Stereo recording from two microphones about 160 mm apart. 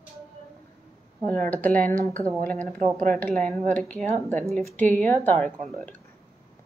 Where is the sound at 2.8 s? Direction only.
55° right (ahead or behind).